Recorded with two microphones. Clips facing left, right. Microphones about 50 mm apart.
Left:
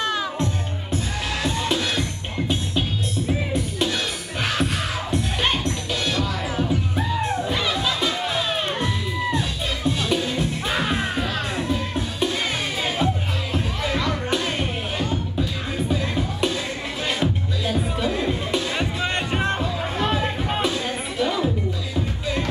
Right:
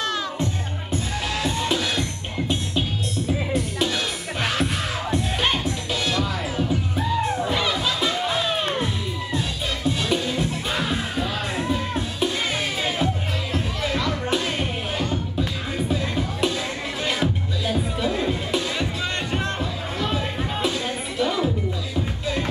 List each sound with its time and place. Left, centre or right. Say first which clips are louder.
0.0 s music: left 1 dB; centre
11.5 s music: even; centre
18.8 s music: left 2 dB; centre
20.6 s music: left 1 dB; centre